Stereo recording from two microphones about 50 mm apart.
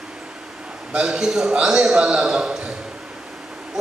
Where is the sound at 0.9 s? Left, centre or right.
Centre.